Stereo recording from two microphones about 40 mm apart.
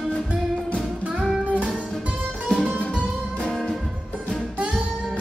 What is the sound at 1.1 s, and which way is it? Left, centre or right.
Music, right.